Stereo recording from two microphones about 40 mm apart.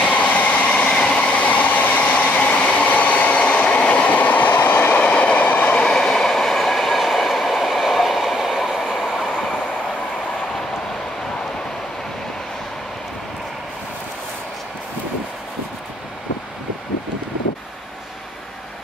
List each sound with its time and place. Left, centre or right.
0.0 s train: left
1.4 s train: left
5.8 s train: centre